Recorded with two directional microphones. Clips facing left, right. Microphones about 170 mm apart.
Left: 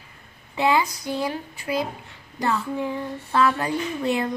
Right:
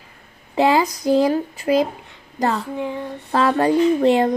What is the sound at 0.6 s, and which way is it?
Speech, 35° right (ahead or behind).